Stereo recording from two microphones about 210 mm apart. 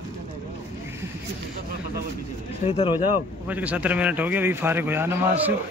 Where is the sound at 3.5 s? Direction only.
5° right (ahead or behind).